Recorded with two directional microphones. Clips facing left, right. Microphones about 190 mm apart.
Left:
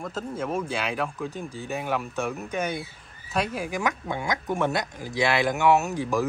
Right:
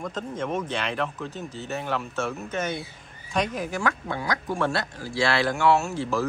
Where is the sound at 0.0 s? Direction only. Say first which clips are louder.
Even; 5° left (ahead or behind).